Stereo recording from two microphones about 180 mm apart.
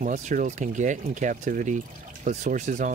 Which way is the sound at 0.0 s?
45° right (ahead or behind).